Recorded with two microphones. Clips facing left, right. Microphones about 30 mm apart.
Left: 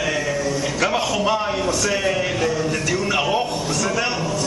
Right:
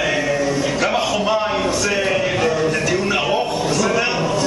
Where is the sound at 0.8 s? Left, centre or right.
Centre.